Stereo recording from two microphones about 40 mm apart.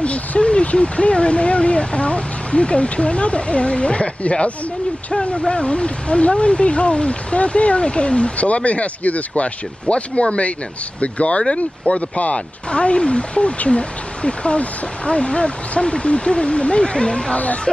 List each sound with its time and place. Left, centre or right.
0.0 s speech: left